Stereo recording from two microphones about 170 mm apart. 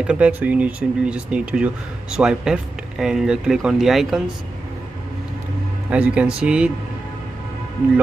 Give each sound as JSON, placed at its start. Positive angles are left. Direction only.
{"t": 0.0, "sound": "speech", "side_deg": -5}
{"t": 5.9, "sound": "speech", "side_deg": -5}